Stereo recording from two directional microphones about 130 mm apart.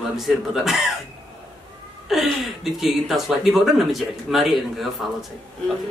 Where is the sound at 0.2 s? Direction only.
Centre (ahead or behind).